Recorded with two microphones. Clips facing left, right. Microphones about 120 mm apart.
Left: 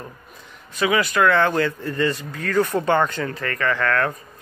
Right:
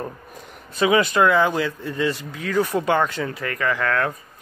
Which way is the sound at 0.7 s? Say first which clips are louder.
Right 2 dB; 30° right (ahead or behind).